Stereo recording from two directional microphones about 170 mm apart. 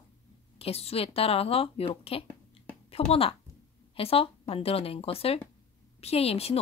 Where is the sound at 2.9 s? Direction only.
35° left (ahead or behind).